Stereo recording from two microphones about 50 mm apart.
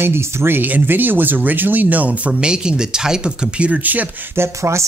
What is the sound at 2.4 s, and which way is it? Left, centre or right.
Speech, centre.